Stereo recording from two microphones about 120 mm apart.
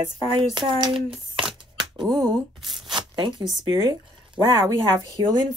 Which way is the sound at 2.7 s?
40° right (ahead or behind).